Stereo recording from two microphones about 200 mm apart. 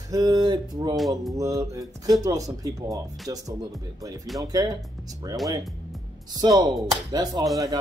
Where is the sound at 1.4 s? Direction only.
15° right (ahead or behind).